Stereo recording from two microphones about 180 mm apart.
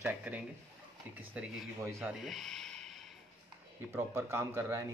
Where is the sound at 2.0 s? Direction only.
Centre (ahead or behind).